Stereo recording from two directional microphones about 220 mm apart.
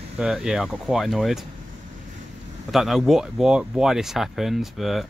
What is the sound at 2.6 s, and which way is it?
Speech, centre (ahead or behind).